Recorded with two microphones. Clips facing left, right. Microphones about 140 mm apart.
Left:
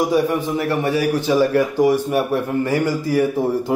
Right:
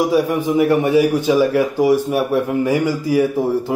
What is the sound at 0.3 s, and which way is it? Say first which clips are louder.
A man's voice: right 5 dB; 15° right (ahead or behind).